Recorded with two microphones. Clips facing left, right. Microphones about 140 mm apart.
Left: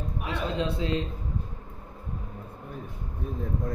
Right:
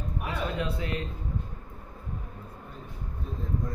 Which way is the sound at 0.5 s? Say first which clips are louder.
Left 4 dB; 25° left (ahead or behind).